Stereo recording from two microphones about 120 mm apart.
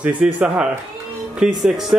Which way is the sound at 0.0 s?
10° right (ahead or behind).